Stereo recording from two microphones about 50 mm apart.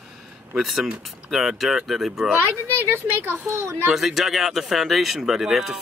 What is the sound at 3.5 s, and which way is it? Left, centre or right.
Speech, right.